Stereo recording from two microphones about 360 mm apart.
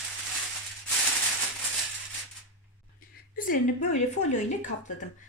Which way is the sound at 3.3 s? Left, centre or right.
Left.